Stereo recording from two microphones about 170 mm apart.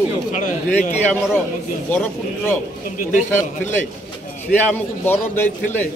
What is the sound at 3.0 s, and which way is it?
Speech, 50° left (ahead or behind).